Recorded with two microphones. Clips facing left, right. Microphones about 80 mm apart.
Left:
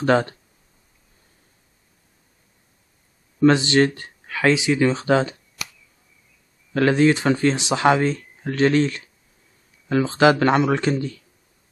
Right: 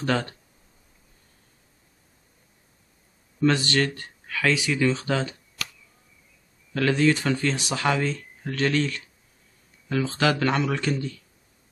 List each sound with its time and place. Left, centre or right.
0.0 s speech: left
3.3 s speech: left
6.7 s speech: left